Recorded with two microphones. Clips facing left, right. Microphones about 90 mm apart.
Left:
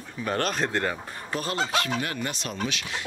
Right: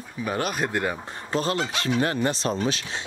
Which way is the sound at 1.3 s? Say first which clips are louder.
Right 3 dB; 30° right (ahead or behind).